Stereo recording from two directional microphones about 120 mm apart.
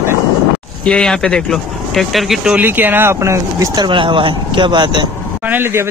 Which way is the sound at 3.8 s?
45° right (ahead or behind).